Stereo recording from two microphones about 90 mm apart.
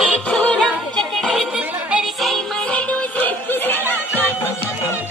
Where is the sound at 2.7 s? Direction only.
15° left (ahead or behind).